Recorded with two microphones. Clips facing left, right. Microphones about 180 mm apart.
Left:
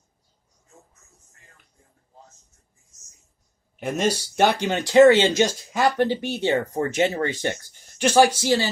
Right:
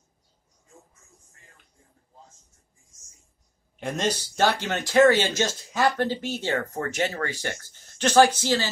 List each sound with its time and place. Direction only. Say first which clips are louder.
3.8 s speech: left 4 dB; 10° left (ahead or behind)